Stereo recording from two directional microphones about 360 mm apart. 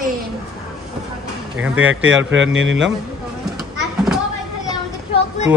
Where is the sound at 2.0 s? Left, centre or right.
Right.